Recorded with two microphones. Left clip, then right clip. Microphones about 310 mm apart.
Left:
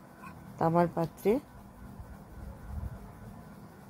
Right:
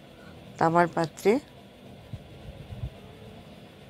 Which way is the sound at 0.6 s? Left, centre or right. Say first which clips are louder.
Right 5 dB; centre.